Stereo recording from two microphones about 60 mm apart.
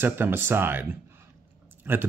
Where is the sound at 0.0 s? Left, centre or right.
Right.